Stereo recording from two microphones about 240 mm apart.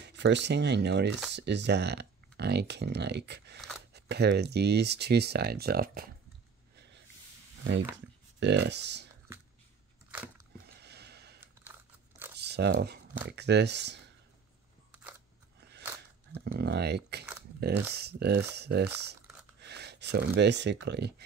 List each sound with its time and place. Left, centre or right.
0.0 s speech: right
8.4 s speech: right
10.1 s biting: centre
10.7 s a sound: right
12.4 s speech: right
16.3 s speech: right
19.6 s a sound: right
20.3 s speech: right